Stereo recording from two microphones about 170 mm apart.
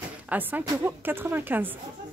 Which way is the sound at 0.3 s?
10° right (ahead or behind).